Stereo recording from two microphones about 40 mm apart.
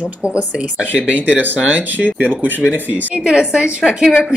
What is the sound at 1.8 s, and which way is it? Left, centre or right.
Speech, left.